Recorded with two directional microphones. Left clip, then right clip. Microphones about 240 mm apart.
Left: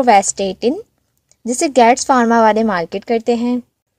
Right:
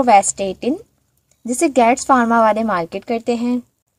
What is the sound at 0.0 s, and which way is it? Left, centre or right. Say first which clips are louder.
Speech: left 1 dB; left.